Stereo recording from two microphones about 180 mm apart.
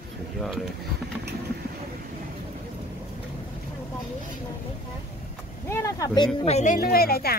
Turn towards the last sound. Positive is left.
turn(degrees=55)  # may be behind; listen again after turning